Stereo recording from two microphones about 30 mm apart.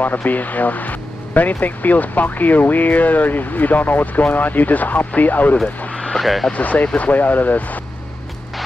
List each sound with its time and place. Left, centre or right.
0.0 s speech: left
6.1 s speech: centre
6.5 s speech: left
7.0 s speech: left